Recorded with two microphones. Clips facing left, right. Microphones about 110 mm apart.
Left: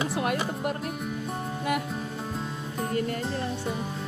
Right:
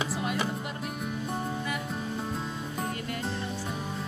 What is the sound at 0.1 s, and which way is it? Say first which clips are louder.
Music: left 4 dB; 60° left (ahead or behind).